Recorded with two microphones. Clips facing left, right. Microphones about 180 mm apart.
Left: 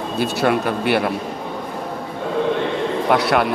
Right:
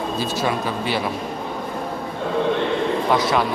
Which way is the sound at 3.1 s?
65° left (ahead or behind).